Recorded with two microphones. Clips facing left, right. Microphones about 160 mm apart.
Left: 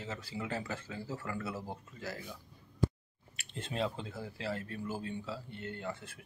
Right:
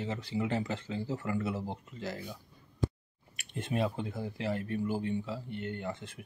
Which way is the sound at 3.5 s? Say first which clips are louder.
Right 4 dB; 15° right (ahead or behind).